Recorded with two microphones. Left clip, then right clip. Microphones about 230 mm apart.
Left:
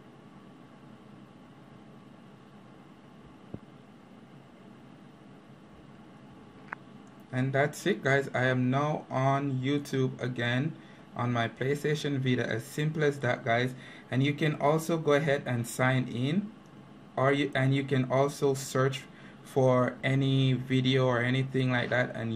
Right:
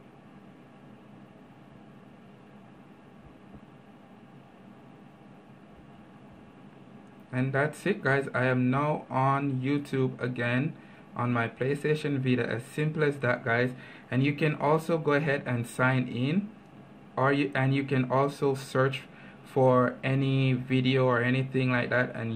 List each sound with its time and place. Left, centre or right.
7.2 s speech: centre